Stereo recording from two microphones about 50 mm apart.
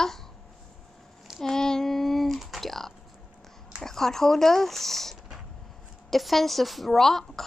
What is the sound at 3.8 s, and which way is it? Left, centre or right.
Speech, centre.